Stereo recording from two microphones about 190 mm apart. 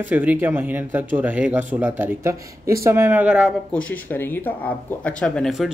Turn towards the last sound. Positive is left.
turn(degrees=0)  # may be behind; listen again after turning